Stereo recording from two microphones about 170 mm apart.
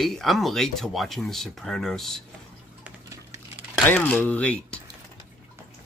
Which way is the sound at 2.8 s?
15° right (ahead or behind).